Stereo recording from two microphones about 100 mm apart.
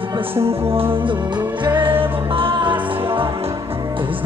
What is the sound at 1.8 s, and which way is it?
Music, 65° right (ahead or behind).